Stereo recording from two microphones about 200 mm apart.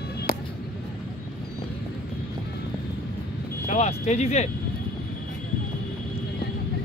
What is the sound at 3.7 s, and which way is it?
Speech, 35° left (ahead or behind).